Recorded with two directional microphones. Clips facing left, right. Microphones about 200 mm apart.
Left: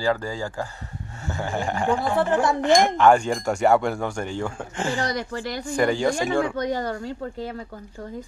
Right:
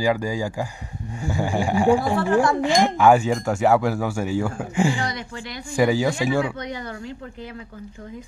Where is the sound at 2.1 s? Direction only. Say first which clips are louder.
Right 2 dB; 20° left (ahead or behind).